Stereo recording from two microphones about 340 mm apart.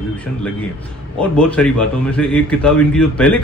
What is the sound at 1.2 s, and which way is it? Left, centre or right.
A man's voice, centre.